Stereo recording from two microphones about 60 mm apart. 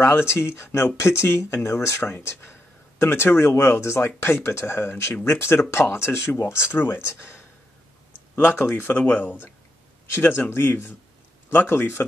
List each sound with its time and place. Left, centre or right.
0.0 s speech: left
8.5 s a man's voice: left